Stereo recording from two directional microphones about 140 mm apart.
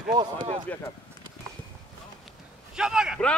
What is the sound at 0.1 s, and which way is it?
Speech, 30° right (ahead or behind).